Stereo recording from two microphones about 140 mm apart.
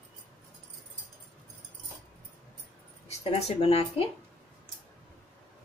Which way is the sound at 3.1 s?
50° left (ahead or behind).